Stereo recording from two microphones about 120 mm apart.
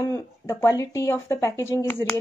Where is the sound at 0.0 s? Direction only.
25° left (ahead or behind).